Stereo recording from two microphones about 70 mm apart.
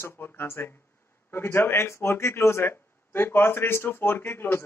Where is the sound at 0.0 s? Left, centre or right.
Left.